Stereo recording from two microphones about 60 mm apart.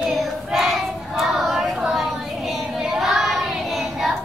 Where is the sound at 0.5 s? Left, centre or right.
Centre.